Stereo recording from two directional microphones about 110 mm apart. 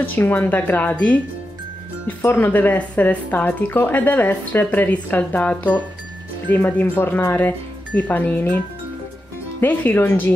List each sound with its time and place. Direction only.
0.0 s speech: 15° left (ahead or behind)
9.6 s speech: 20° left (ahead or behind)